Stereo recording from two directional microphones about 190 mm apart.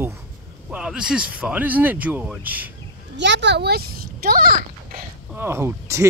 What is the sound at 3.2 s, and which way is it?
A child's voice, 65° right (ahead or behind).